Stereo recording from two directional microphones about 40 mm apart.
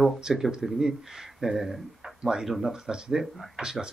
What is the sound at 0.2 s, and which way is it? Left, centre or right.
Speech, centre.